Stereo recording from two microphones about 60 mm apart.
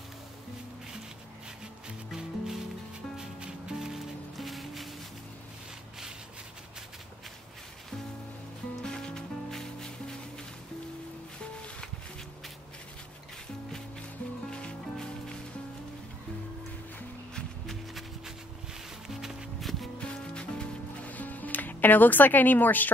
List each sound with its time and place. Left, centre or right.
2.1 s music: centre
8.8 s music: centre
14.5 s music: centre
17.6 s music: centre
20.0 s music: centre
21.1 s music: left